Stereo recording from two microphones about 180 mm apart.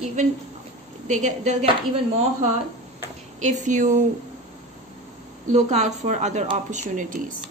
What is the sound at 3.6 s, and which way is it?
Speech, 45° right (ahead or behind).